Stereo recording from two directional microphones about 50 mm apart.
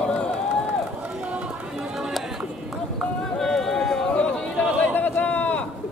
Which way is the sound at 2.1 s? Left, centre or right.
Centre.